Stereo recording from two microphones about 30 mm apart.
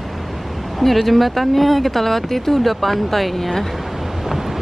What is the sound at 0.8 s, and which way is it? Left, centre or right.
Speech, centre.